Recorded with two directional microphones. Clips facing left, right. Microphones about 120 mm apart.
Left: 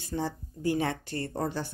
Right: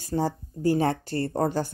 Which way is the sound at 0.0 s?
40° right (ahead or behind).